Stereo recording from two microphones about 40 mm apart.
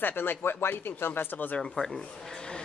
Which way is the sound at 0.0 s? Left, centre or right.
Left.